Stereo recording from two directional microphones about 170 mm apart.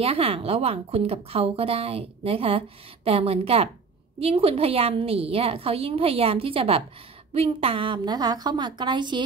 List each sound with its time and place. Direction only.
0.0 s a woman's voice: 35° right (ahead or behind)